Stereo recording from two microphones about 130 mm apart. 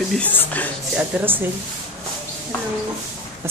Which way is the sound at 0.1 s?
10° left (ahead or behind).